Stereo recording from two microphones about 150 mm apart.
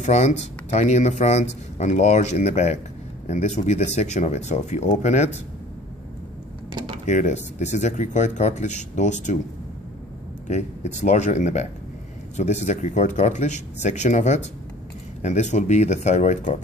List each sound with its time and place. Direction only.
0.0 s speech: 50° left (ahead or behind)
7.1 s speech: 50° left (ahead or behind)
10.5 s speech: 50° left (ahead or behind)